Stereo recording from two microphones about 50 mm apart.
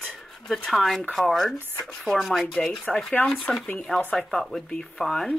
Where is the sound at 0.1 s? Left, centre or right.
Centre.